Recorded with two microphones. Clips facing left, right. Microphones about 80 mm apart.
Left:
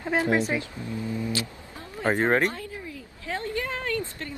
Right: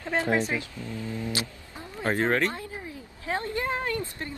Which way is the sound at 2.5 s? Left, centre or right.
Right.